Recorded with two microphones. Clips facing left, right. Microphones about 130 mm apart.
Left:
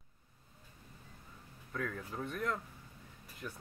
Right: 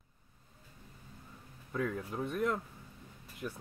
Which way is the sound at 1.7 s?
15° right (ahead or behind).